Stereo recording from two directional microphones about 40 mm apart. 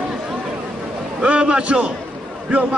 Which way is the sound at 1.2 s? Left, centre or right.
Right.